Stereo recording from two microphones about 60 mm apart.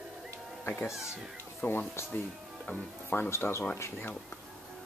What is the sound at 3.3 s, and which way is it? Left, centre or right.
Speech, left.